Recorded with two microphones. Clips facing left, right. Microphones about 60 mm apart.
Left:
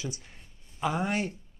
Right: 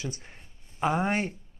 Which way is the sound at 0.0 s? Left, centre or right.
Right.